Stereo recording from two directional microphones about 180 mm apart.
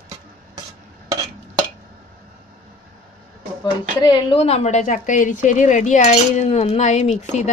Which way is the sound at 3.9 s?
25° left (ahead or behind).